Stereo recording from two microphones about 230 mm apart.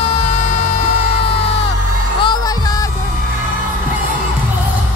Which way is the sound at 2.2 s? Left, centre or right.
Centre.